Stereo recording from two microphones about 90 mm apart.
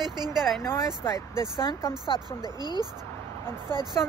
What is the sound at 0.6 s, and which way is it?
Speech, 35° left (ahead or behind).